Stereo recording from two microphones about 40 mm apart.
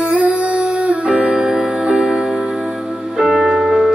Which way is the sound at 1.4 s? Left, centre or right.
Centre.